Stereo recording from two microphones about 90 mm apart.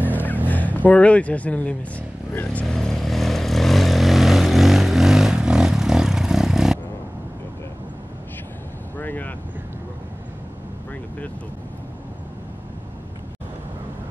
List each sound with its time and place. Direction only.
0.5 s speech: 20° left (ahead or behind)
2.6 s vehicle: 5° left (ahead or behind)
8.9 s vehicle: 20° left (ahead or behind)